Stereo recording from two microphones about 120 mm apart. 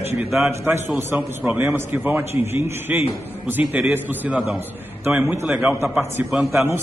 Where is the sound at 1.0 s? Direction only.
15° right (ahead or behind).